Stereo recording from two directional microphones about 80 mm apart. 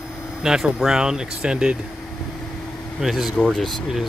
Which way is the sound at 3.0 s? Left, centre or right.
Centre.